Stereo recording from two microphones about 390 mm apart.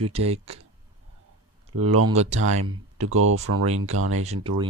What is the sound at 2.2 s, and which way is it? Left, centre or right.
Speech, centre.